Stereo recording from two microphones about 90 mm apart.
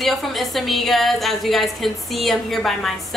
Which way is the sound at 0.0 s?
Centre (ahead or behind).